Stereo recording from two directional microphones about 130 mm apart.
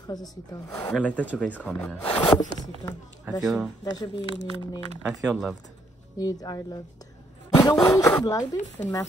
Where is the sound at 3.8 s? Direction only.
30° left (ahead or behind).